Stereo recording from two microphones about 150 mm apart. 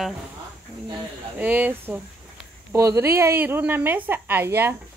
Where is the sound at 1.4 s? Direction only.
10° right (ahead or behind).